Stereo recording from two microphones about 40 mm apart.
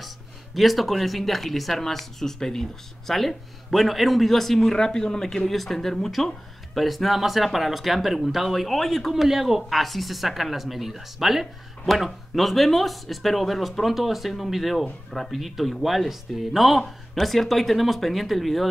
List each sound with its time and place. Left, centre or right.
0.6 s speech: centre
4.7 s speech: centre